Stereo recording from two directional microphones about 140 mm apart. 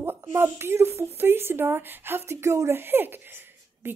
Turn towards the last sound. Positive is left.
turn(degrees=-15)  # may be behind; listen again after turning